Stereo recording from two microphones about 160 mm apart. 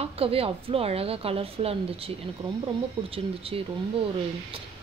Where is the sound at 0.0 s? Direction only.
35° right (ahead or behind).